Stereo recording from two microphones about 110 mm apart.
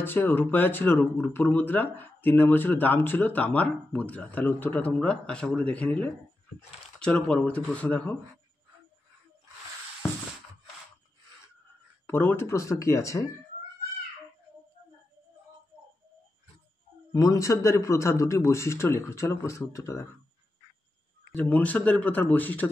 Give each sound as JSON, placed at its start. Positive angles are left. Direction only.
{"t": 0.0, "sound": "speech", "side_deg": 20}
{"t": 12.1, "sound": "speech", "side_deg": 20}
{"t": 17.1, "sound": "speech", "side_deg": 30}
{"t": 21.3, "sound": "speech", "side_deg": 15}